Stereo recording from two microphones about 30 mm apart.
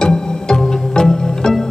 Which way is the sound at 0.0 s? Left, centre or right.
Left.